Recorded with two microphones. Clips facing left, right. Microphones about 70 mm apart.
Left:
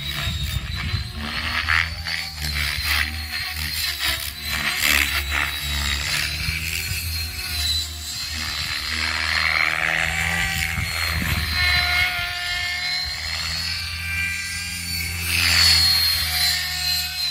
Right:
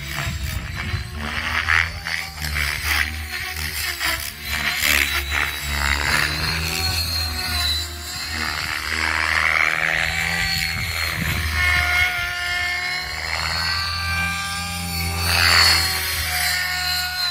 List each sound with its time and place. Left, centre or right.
1.2 s a sound: centre
4.5 s vehicle: centre
5.8 s music: right
6.5 s music: right
7.5 s music: right
8.4 s a sound: right; by 11.3 s centre
11.5 s music: centre
13.4 s music: right
14.0 s music: right
15.1 s music: right
15.6 s music: right
16.0 s music: centre; by 17.3 s right